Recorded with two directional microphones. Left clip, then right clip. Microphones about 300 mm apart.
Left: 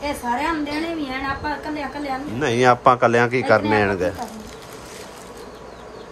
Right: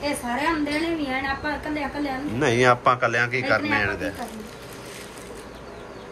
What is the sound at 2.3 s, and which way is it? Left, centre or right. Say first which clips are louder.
Speech: left 2 dB; centre.